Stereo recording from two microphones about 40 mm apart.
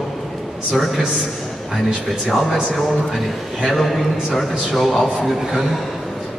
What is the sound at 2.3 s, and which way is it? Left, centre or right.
A man's voice, centre.